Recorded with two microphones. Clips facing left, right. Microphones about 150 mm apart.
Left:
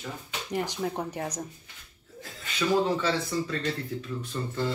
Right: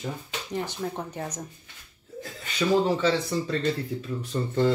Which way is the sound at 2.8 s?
30° right (ahead or behind).